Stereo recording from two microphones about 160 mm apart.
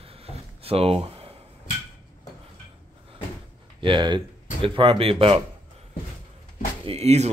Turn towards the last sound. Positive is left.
turn(degrees=-45)  # may be behind; listen again after turning